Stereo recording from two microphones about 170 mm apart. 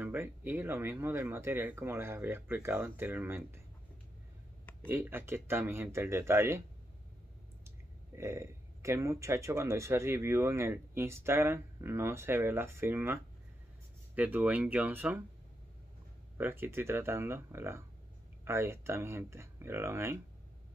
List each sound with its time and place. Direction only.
0.0 s speech: 10° right (ahead or behind)
4.8 s speech: 10° right (ahead or behind)
8.2 s speech: 15° right (ahead or behind)
16.3 s speech: 15° right (ahead or behind)